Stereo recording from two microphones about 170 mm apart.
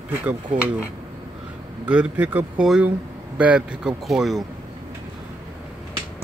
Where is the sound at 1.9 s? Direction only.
10° right (ahead or behind).